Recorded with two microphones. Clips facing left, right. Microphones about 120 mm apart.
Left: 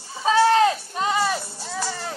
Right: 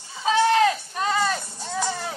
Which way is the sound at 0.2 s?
35° left (ahead or behind).